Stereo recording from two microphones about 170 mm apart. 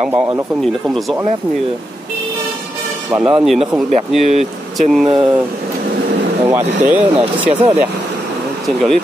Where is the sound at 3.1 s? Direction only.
5° right (ahead or behind).